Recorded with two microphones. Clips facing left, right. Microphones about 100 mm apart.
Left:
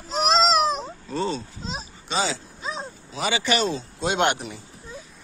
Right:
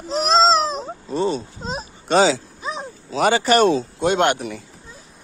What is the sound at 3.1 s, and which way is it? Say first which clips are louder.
Speech: right 8 dB; 50° right (ahead or behind).